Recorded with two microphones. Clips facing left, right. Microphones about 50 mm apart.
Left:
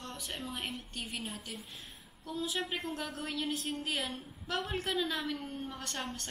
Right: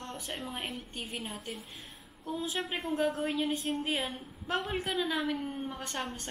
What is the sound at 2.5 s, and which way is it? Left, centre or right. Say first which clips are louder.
Speech: even; centre.